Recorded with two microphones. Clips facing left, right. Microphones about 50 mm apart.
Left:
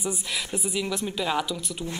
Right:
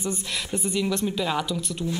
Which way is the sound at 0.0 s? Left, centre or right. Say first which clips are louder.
Right 1 dB; centre.